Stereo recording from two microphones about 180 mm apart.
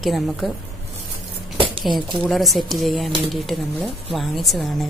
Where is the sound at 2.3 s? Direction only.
Centre (ahead or behind).